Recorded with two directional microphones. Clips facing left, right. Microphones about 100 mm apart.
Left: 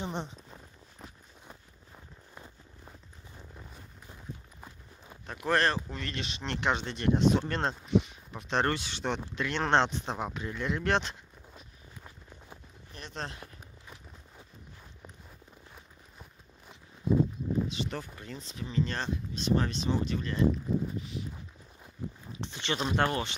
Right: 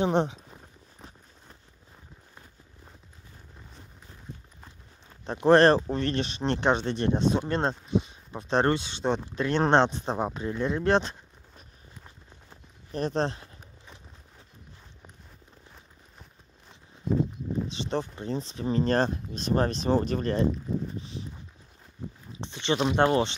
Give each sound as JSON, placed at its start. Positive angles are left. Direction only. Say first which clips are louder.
{"t": 0.0, "sound": "speech", "louder": "right 12 dB", "side_deg": -70}
{"t": 4.6, "sound": "walk", "louder": "left 2 dB", "side_deg": 10}
{"t": 5.2, "sound": "speech", "louder": "right 10 dB", "side_deg": -30}
{"t": 8.0, "sound": "a sound", "louder": "right 4 dB", "side_deg": -25}
{"t": 8.6, "sound": "speech", "louder": "right 5 dB", "side_deg": -25}
{"t": 9.4, "sound": "speech", "louder": "right 7 dB", "side_deg": -40}
{"t": 9.7, "sound": "speech", "louder": "right 4 dB", "side_deg": -20}
{"t": 10.0, "sound": "speech", "louder": "right 6 dB", "side_deg": -30}
{"t": 12.9, "sound": "speech", "louder": "right 13 dB", "side_deg": -35}
{"t": 17.6, "sound": "speech", "louder": "right 5 dB", "side_deg": -30}
{"t": 21.0, "sound": "speech", "louder": "even", "side_deg": -30}
{"t": 22.4, "sound": "speech", "louder": "right 6 dB", "side_deg": -20}